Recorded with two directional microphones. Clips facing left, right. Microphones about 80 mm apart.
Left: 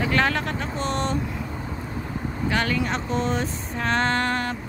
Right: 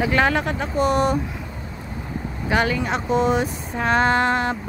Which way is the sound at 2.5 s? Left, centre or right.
Centre.